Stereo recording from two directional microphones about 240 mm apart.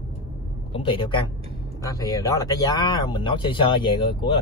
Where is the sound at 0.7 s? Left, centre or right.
Left.